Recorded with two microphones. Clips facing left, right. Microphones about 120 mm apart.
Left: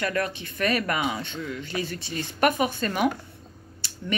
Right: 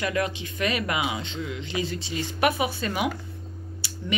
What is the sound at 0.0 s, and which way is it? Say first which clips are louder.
Speech: right 1 dB; 15° right (ahead or behind).